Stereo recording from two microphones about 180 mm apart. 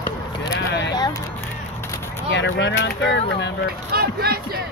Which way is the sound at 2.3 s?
85° left.